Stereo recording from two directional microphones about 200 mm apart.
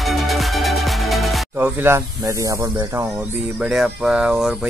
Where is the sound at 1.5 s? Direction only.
10° right (ahead or behind).